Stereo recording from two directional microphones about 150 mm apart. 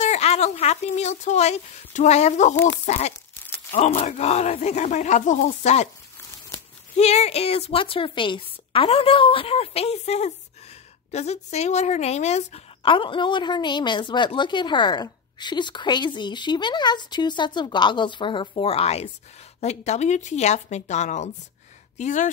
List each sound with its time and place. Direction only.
0.0 s a woman's voice: 45° left (ahead or behind)
2.5 s speech: 10° left (ahead or behind)
2.9 s a woman's voice: 45° left (ahead or behind)
7.0 s a woman's voice: 45° left (ahead or behind)